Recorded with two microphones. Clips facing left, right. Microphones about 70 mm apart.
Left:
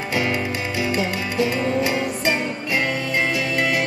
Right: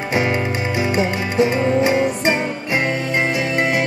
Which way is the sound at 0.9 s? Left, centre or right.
Right.